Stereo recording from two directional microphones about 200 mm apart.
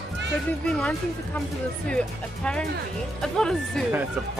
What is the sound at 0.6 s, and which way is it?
Speech, 5° left (ahead or behind).